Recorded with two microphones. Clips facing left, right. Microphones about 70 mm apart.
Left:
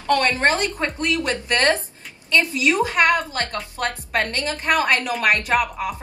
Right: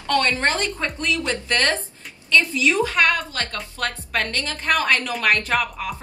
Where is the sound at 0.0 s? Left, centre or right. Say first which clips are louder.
Left 2 dB; left.